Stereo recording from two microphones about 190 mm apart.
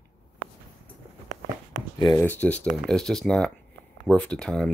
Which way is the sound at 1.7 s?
20° left (ahead or behind).